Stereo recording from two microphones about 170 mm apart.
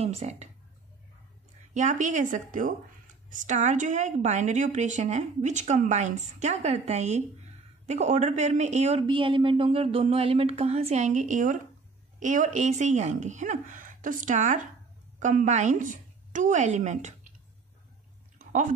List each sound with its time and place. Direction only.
0.0 s speech: 40° right (ahead or behind)
1.7 s speech: 45° right (ahead or behind)
9.0 s a woman's voice: 30° right (ahead or behind)
18.4 s a sound: 50° right (ahead or behind)